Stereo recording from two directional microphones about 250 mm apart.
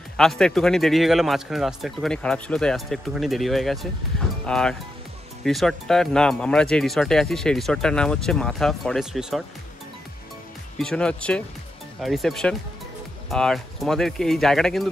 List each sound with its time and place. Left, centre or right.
0.2 s speech: centre
10.8 s speech: centre